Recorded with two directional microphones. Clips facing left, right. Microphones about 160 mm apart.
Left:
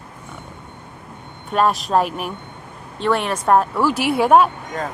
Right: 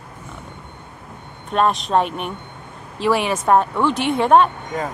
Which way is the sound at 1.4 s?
5° left (ahead or behind).